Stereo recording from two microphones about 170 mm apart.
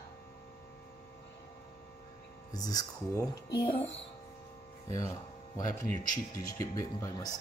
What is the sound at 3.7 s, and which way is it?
Music, 35° left (ahead or behind).